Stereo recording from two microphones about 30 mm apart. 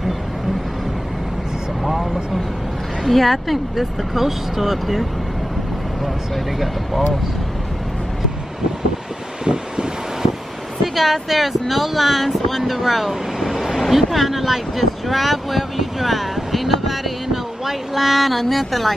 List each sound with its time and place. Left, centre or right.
3.0 s a woman's voice: centre
6.6 s speech: centre
9.4 s vehicle: right
10.8 s speech: centre